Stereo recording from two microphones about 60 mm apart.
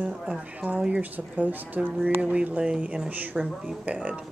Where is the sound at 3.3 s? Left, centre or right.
Centre.